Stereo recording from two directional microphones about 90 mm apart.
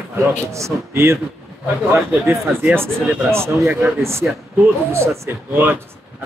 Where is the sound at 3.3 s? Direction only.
30° right (ahead or behind).